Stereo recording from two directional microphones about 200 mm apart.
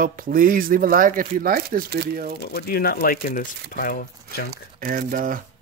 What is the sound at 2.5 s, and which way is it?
Speech, 50° left (ahead or behind).